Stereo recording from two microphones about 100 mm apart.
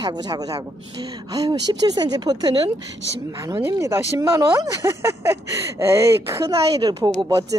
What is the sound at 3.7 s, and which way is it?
Speech, 35° right (ahead or behind).